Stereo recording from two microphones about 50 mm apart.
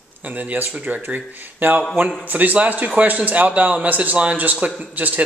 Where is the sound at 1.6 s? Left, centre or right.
Right.